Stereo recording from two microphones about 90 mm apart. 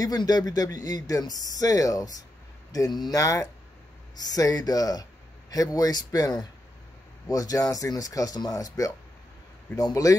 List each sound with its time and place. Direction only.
0.0 s speech: 45° left (ahead or behind)